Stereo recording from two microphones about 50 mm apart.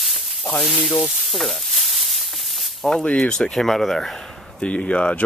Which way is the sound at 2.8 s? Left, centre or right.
Centre.